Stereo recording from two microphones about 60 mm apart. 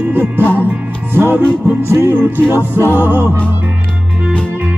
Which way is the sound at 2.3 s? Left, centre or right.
Right.